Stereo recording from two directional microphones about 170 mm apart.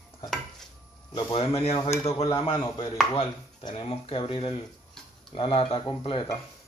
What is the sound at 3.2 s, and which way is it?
Speech, 35° left (ahead or behind).